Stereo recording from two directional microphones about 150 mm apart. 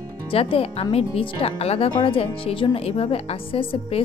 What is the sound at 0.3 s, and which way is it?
Speech, 40° left (ahead or behind).